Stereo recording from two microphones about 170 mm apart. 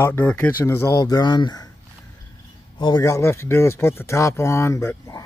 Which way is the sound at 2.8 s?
25° left (ahead or behind).